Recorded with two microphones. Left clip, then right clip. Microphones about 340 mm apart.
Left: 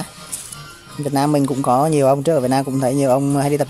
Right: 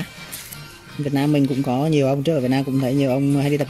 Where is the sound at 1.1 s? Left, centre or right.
Left.